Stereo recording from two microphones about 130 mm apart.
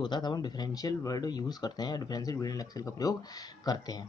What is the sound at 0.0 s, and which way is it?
Speech, 35° left (ahead or behind).